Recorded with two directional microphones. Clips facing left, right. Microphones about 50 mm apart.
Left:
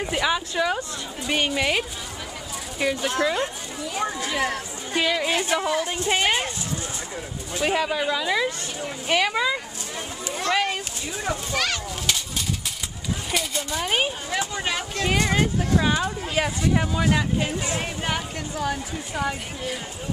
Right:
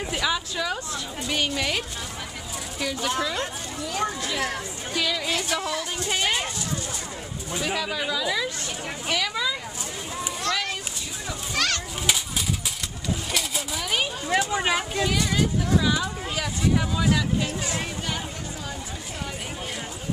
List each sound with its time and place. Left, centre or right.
0.1 s speech: centre
3.0 s a child's voice: centre
3.9 s speech: centre
7.6 s speech: left
10.5 s a child's voice: centre
11.5 s a child's voice: centre
13.3 s speech: centre
13.8 s speech: left
14.5 s speech: centre
15.0 s speech: left
16.8 s speech: centre
18.0 s a sound: left